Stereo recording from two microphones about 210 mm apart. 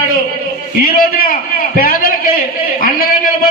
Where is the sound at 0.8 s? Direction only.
45° left (ahead or behind).